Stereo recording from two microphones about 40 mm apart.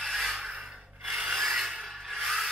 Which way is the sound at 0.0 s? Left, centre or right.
Centre.